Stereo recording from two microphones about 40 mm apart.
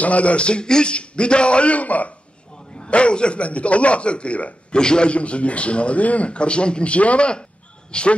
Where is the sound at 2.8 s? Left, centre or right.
Left.